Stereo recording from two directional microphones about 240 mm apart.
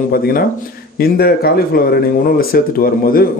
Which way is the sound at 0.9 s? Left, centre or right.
Left.